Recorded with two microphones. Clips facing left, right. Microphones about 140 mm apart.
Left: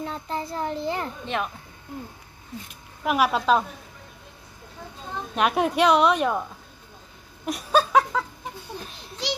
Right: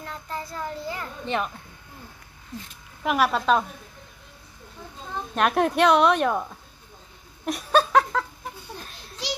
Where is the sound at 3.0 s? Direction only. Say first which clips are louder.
Even; 5° left (ahead or behind).